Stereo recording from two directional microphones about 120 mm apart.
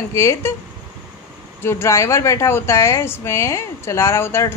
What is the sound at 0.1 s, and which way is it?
Speech, 25° left (ahead or behind).